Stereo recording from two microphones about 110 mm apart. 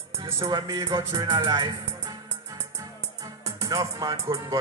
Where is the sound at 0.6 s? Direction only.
40° right (ahead or behind).